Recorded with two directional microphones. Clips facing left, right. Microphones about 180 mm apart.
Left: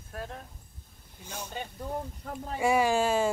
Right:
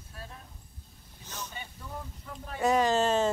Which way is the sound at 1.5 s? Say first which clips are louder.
Left 7 dB; 50° left (ahead or behind).